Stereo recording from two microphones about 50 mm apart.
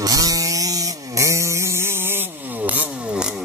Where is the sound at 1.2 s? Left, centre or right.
Right.